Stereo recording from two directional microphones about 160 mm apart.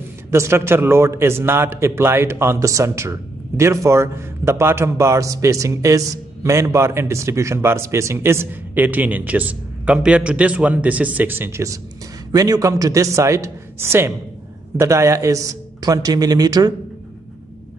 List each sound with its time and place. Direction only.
0.3 s a man's voice: 15° right (ahead or behind)